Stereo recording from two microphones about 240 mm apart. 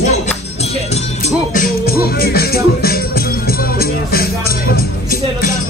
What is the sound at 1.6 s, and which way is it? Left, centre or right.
A man's voice, left.